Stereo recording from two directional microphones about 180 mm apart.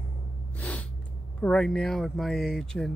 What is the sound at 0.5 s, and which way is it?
Snort, 5° left (ahead or behind).